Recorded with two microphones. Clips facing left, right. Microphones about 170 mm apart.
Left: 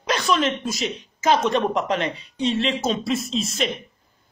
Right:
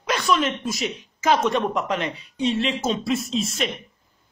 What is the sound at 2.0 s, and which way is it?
Speech, 5° right (ahead or behind).